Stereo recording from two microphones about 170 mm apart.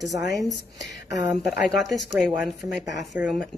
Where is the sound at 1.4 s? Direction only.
Centre (ahead or behind).